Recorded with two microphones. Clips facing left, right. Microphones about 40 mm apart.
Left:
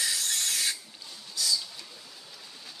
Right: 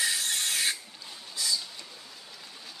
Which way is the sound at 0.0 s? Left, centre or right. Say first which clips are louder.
Right 2 dB; right.